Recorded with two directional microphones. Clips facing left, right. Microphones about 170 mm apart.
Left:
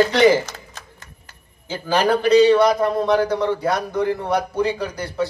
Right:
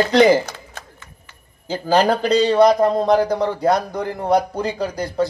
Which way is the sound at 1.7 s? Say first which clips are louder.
Right 2 dB; 35° right (ahead or behind).